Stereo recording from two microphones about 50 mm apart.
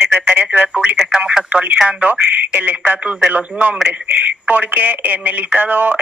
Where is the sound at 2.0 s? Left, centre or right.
Right.